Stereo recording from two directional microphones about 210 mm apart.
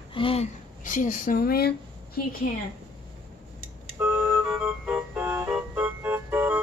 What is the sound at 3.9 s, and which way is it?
Music, 10° right (ahead or behind).